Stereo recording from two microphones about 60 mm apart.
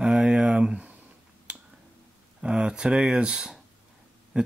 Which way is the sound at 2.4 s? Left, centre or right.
Centre.